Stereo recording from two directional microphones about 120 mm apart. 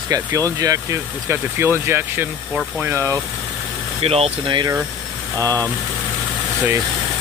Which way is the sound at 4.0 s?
55° right (ahead or behind).